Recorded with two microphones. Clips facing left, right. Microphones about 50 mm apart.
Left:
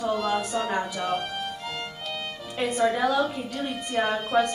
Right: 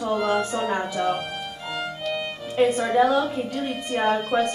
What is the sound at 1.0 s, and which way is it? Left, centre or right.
Music, centre.